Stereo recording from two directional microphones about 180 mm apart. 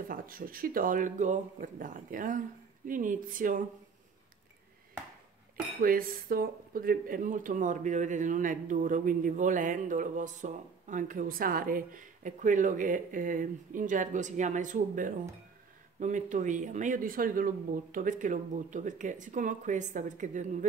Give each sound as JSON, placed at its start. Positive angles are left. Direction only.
{"t": 0.1, "sound": "speech", "side_deg": -50}
{"t": 5.8, "sound": "speech", "side_deg": -55}